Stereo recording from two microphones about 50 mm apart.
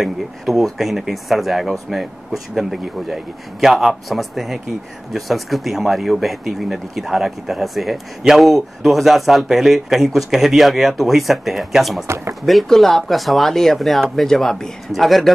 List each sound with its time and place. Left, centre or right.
0.0 s speech: centre
12.6 s speech: centre